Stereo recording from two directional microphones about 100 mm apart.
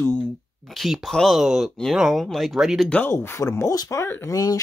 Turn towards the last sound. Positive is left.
turn(degrees=35)  # may be behind; listen again after turning